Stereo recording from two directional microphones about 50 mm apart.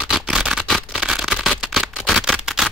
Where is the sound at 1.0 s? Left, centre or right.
Centre.